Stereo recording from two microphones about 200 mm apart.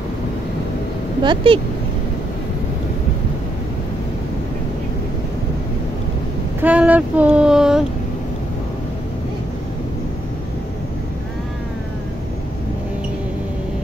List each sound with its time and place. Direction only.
1.2 s speech: 25° right (ahead or behind)
6.6 s speech: 10° right (ahead or behind)